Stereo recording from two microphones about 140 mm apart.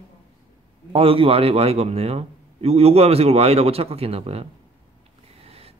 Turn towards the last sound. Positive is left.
turn(degrees=-45)  # may be behind; listen again after turning